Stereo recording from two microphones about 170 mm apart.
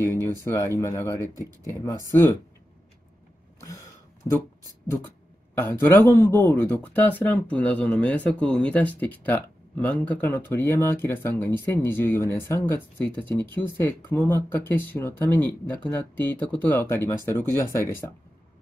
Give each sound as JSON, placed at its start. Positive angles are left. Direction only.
{"t": 0.2, "sound": "speech", "side_deg": 15}
{"t": 4.2, "sound": "speech", "side_deg": 15}
{"t": 5.5, "sound": "speech", "side_deg": 15}